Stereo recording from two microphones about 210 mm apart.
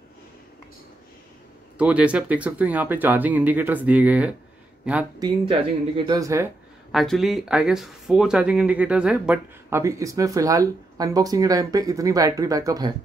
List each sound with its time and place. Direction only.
1.8 s speech: 5° right (ahead or behind)
5.2 s speech: 25° right (ahead or behind)
6.9 s speech: centre (ahead or behind); by 12.9 s 15° right (ahead or behind)